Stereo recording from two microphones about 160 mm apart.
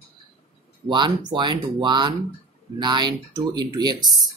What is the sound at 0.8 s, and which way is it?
Speech, 30° right (ahead or behind).